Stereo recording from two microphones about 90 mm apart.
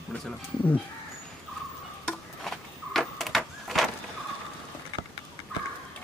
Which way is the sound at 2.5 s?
Centre (ahead or behind).